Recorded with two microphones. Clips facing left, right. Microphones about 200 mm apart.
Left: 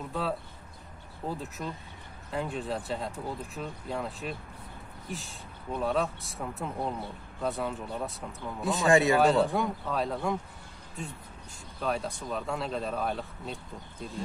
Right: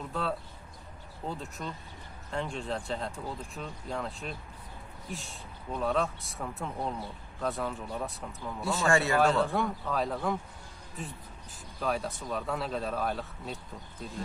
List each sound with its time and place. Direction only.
0.1 s speech: centre (ahead or behind)
8.5 s speech: 20° left (ahead or behind)
9.2 s speech: centre (ahead or behind)
11.8 s speech: centre (ahead or behind)